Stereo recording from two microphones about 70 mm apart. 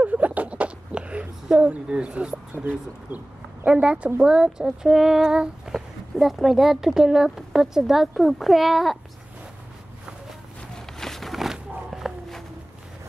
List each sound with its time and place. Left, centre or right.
0.0 s a sound: right
2.5 s speech: right
3.6 s speech: centre
11.0 s walk: centre